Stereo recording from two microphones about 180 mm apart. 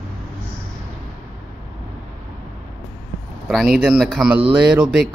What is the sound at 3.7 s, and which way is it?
Speech, centre (ahead or behind).